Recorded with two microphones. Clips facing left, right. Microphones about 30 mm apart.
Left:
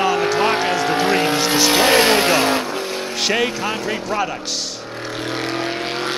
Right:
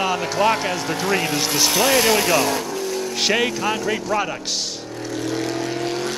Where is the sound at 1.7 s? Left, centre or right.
Left.